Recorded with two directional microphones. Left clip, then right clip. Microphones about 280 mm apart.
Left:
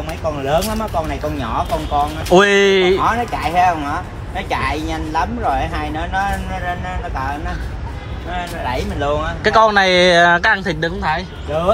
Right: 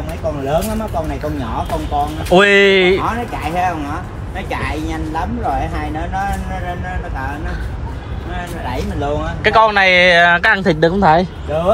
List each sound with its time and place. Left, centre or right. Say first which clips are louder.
0.5 s speech: left 1 dB; centre
2.3 s speech: right 2 dB; centre
3.0 s speech: left 3 dB; left
3.4 s speech: left 4 dB; centre
4.6 s speech: left 2 dB; left
5.6 s speech: even; centre
9.0 s speech: left 2 dB; centre
9.4 s speech: right 1 dB; centre